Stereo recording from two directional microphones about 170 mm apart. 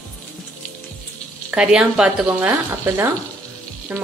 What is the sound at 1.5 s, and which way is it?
A woman's voice, 5° right (ahead or behind).